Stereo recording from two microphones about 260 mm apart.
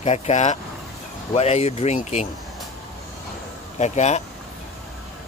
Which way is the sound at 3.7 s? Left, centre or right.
Left.